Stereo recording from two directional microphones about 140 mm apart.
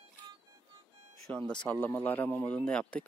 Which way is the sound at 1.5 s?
10° left (ahead or behind).